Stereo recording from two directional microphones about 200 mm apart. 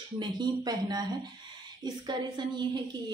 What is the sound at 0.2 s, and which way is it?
A woman's voice, 20° right (ahead or behind).